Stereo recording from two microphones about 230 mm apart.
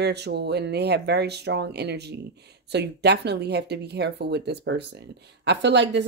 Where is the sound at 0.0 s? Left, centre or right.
Right.